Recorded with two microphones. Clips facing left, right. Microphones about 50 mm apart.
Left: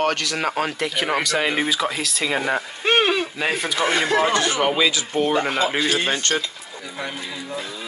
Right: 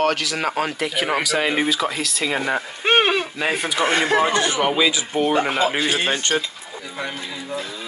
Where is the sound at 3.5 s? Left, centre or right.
Centre.